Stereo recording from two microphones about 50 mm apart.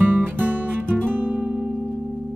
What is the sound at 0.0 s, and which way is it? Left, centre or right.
Music, right.